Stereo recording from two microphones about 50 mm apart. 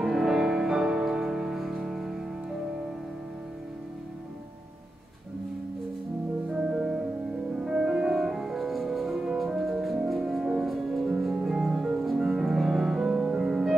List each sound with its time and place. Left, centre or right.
0.0 s music: centre
6.5 s music: centre